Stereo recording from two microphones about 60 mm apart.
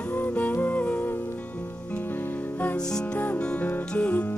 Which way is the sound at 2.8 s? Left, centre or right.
Centre.